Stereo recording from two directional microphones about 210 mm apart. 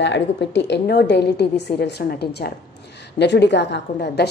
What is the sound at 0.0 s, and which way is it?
A woman's voice, 55° left (ahead or behind).